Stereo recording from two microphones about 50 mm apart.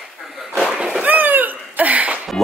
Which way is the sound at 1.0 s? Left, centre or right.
Right.